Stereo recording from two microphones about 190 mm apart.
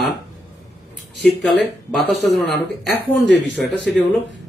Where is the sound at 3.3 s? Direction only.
70° left (ahead or behind).